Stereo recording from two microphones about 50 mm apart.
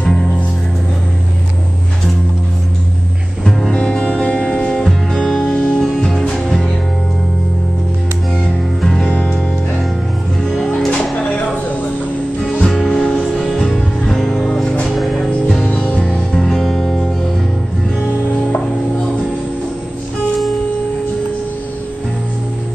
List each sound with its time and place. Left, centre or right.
3.4 s music: centre
4.8 s music: centre
9.0 s music: left
10.9 s music: left
12.5 s music: centre
15.7 s music: left
16.0 s music: centre